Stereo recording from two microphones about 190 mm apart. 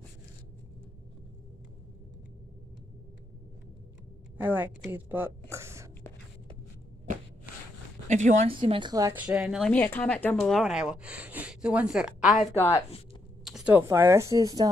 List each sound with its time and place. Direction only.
4.4 s a woman's voice: 10° right (ahead or behind)
8.1 s a woman's voice: 40° right (ahead or behind)
8.5 s a woman's voice: 25° right (ahead or behind)
9.1 s speech: 5° right (ahead or behind); by 10.3 s 10° left (ahead or behind)
10.4 s speech: 5° right (ahead or behind)
12.5 s speech: 10° left (ahead or behind)
13.4 s speech: centre (ahead or behind); by 14.7 s 20° right (ahead or behind)